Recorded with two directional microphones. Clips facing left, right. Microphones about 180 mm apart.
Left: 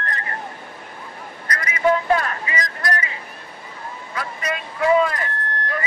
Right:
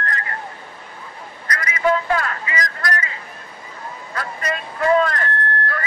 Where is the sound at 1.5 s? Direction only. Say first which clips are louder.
Even; 30° left (ahead or behind).